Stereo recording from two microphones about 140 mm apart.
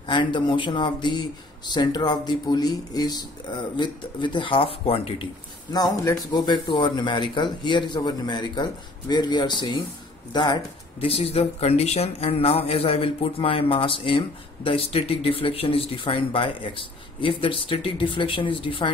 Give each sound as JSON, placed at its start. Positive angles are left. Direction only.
{"t": 0.0, "sound": "speech", "side_deg": 35}
{"t": 5.7, "sound": "speech", "side_deg": 25}
{"t": 11.1, "sound": "speech", "side_deg": 45}